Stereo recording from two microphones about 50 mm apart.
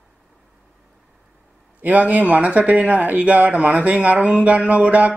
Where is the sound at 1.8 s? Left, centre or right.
Right.